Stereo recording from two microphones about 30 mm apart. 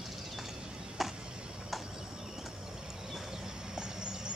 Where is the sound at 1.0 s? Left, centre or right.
Centre.